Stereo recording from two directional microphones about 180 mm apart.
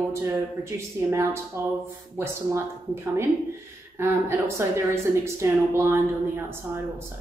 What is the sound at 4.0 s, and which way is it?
Speech, 15° right (ahead or behind).